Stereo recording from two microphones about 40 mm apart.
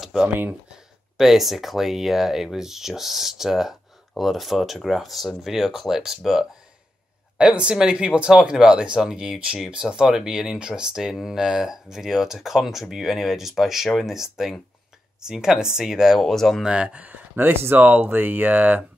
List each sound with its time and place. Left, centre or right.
0.3 s speech: right
1.1 s speech: centre
7.3 s speech: right; by 16.2 s centre
16.2 s speech: centre
16.6 s speech: right
17.4 s speech: right